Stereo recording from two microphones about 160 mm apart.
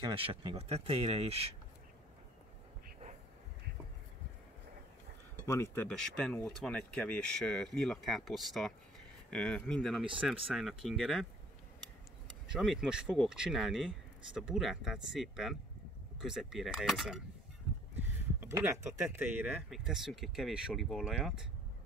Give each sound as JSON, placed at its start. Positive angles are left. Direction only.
{"t": 0.1, "sound": "speech", "side_deg": -35}
{"t": 5.5, "sound": "speech", "side_deg": 15}
{"t": 12.5, "sound": "speech", "side_deg": 0}
{"t": 18.4, "sound": "speech", "side_deg": -15}
{"t": 19.7, "sound": "speech", "side_deg": 0}